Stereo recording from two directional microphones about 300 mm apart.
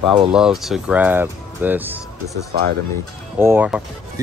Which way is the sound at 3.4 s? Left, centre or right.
Centre.